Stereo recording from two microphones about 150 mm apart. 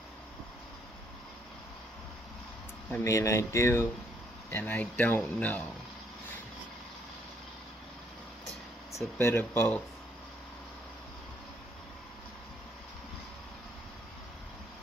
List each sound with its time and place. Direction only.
2.9 s speech: 20° left (ahead or behind)
8.9 s speech: 15° left (ahead or behind)